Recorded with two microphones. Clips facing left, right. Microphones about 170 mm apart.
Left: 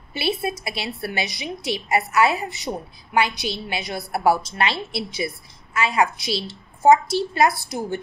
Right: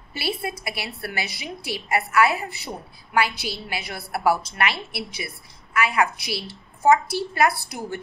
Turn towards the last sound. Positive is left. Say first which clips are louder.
# left 4 dB
turn(degrees=20)  # may be behind; listen again after turning